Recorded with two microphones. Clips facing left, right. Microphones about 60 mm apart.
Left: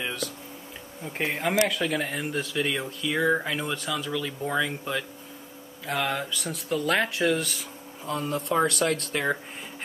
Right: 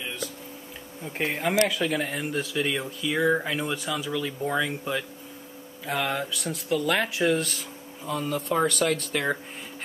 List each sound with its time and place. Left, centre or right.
0.0 s a sound: left
1.0 s speech: centre
8.5 s speech: centre
9.1 s speech: centre